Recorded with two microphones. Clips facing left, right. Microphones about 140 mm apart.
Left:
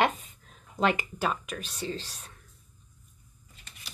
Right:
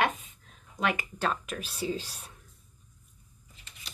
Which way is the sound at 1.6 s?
5° right (ahead or behind).